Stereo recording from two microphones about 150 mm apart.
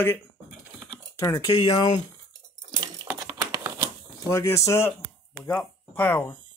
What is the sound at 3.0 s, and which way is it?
Crumpling, 20° right (ahead or behind).